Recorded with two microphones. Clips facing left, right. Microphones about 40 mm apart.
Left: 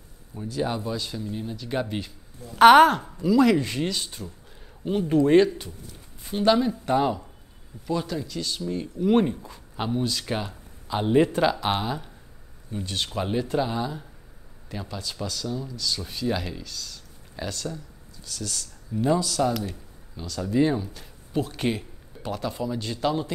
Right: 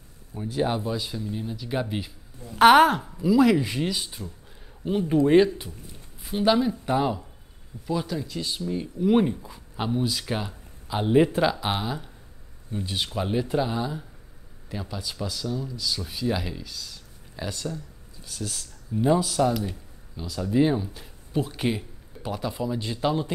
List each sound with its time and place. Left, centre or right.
0.3 s speech: right
0.8 s speech: centre
8.3 s speech: centre
8.6 s speech: centre
19.5 s speech: centre